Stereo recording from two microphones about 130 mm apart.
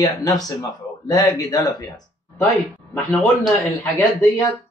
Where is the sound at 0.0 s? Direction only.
30° left (ahead or behind).